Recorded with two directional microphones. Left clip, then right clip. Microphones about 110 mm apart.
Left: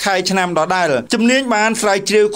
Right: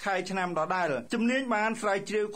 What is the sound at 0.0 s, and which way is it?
Speech, 45° left (ahead or behind).